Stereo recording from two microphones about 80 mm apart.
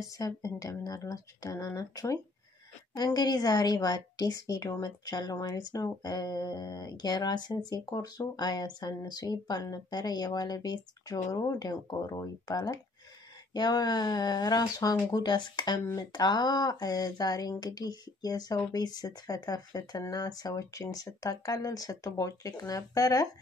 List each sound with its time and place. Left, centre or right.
0.0 s speech: left
3.0 s speech: left